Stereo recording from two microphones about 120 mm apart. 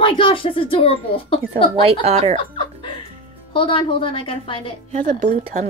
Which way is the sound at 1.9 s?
60° right (ahead or behind).